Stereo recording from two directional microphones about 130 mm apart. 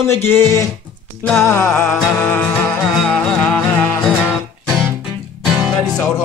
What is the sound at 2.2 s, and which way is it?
Music, 15° left (ahead or behind).